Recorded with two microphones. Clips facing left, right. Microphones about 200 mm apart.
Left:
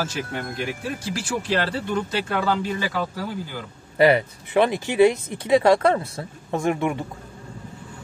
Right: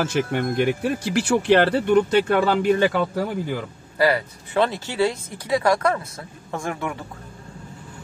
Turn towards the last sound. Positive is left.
turn(degrees=20)  # may be behind; listen again after turning